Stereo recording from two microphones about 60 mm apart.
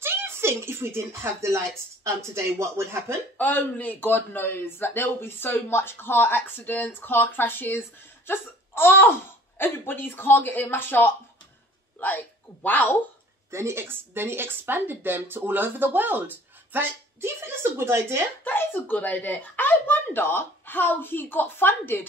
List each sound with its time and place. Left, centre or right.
0.0 s speech: right
3.3 s a man's voice: left
13.5 s speech: right
18.4 s a man's voice: left